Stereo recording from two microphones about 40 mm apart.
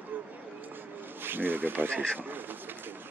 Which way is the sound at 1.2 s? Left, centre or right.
Right.